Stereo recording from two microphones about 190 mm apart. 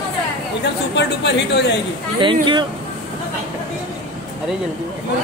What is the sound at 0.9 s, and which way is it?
Speech, 65° left (ahead or behind).